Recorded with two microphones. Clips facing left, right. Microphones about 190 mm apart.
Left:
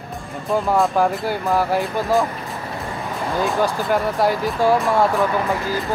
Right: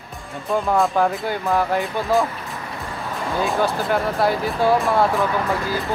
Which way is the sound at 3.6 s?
10° left (ahead or behind).